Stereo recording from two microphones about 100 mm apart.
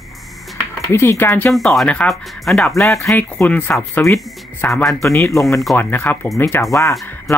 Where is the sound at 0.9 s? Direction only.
25° left (ahead or behind).